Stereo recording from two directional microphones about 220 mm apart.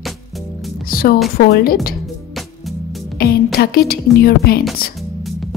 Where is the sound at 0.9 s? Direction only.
40° left (ahead or behind).